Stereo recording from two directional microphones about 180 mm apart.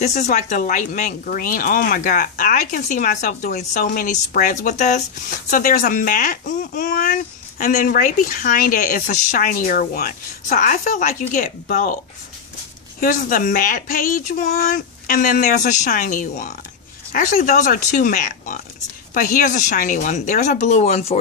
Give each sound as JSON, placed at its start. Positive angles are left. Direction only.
{"t": 0.0, "sound": "speech", "side_deg": 40}
{"t": 13.0, "sound": "speech", "side_deg": 50}